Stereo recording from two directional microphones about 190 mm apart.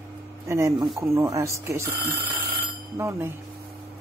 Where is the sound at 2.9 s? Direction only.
15° right (ahead or behind).